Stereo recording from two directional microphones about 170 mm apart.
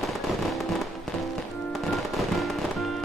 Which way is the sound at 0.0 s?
Centre (ahead or behind).